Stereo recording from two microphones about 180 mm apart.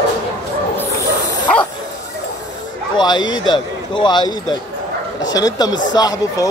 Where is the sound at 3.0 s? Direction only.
25° left (ahead or behind).